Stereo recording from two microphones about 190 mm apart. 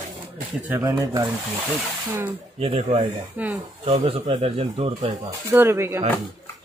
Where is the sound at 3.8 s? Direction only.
30° right (ahead or behind).